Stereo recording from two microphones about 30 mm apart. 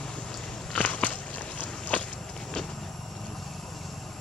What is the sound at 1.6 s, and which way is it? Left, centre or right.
Walk, left.